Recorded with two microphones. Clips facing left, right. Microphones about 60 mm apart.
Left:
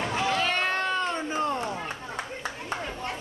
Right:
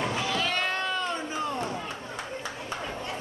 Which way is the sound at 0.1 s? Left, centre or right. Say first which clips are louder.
Left 3 dB; left.